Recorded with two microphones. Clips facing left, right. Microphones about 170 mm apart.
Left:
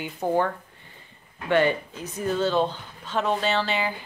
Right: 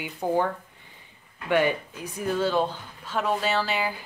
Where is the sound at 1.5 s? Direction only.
10° right (ahead or behind).